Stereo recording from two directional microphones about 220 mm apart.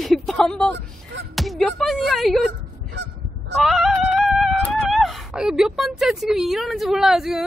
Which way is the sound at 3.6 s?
Centre (ahead or behind).